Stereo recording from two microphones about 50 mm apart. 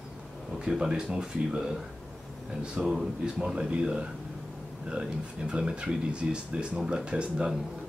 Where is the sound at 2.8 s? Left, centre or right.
Centre.